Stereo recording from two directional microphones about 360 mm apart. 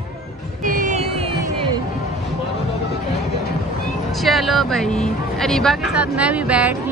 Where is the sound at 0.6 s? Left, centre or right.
Right.